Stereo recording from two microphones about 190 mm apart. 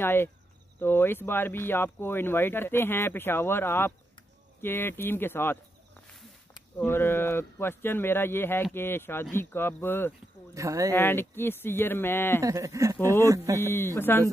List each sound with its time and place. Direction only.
0.0 s speech: 10° left (ahead or behind)
10.5 s speech: 15° right (ahead or behind)
10.9 s speech: 10° left (ahead or behind)
12.4 s speech: 15° right (ahead or behind)
13.6 s speech: 10° left (ahead or behind)